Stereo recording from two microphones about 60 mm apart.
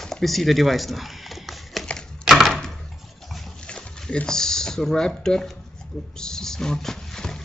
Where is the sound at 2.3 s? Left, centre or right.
Centre.